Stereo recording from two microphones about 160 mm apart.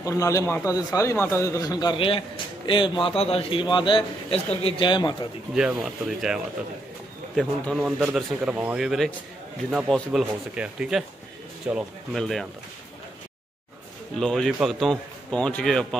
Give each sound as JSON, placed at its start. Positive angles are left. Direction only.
{"t": 0.0, "sound": "a man's voice", "side_deg": 20}
{"t": 5.5, "sound": "a man's voice", "side_deg": -5}
{"t": 14.1, "sound": "a man's voice", "side_deg": 5}